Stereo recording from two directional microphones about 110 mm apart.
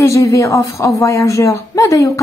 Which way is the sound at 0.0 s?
30° left (ahead or behind).